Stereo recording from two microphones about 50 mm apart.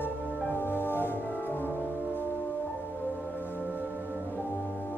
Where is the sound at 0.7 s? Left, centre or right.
Left.